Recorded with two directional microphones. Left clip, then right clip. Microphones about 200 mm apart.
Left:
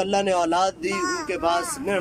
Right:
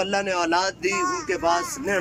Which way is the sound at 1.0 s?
50° left (ahead or behind).